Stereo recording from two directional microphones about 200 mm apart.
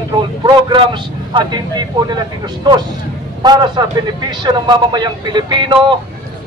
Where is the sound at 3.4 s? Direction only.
20° right (ahead or behind).